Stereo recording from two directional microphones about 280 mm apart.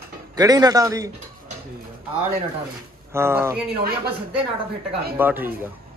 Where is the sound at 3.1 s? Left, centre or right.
Centre.